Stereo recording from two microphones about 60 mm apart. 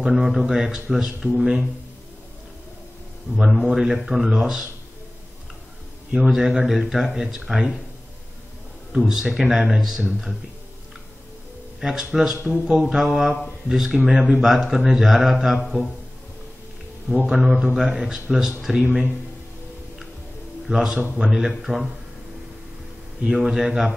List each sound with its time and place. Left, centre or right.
0.0 s speech: centre
3.3 s speech: centre
6.1 s speech: centre
8.9 s speech: centre
11.8 s speech: centre
12.7 s speech: centre
17.1 s speech: centre
20.6 s speech: centre
23.2 s speech: centre